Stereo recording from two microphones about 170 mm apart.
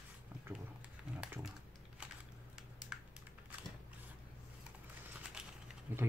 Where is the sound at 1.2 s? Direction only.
5° right (ahead or behind).